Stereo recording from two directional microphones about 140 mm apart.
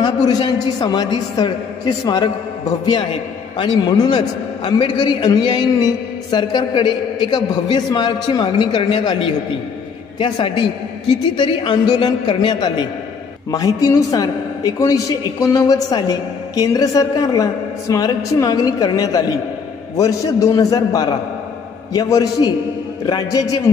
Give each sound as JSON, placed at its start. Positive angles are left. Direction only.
{"t": 0.0, "sound": "a man's voice", "side_deg": 30}